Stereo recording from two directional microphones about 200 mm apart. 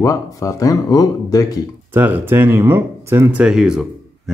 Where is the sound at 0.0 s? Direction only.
15° left (ahead or behind).